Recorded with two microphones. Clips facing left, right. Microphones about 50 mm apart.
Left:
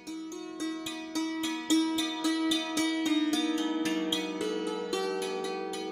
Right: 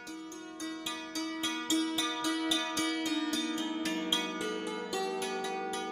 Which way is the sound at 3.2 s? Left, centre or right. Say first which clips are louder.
Left 5 dB; left.